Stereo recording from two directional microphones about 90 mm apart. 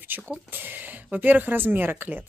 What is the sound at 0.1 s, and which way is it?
Speech, 20° right (ahead or behind).